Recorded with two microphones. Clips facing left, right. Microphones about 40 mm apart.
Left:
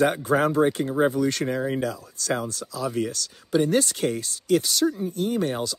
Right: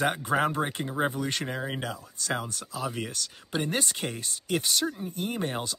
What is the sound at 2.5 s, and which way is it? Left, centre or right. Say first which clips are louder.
Speech: left 5 dB; right.